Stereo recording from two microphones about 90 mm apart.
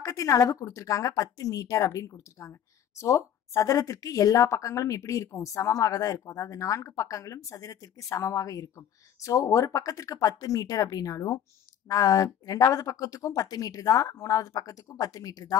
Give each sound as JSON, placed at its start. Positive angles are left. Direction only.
{"t": 0.0, "sound": "speech", "side_deg": 40}